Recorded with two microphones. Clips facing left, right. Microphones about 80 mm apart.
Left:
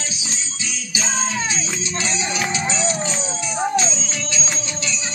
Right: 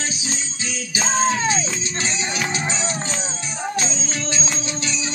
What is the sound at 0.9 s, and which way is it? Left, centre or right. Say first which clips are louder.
Music: right 4 dB; right.